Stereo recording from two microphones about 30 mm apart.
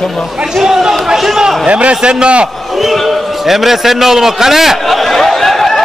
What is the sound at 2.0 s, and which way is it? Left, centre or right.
Speech, right.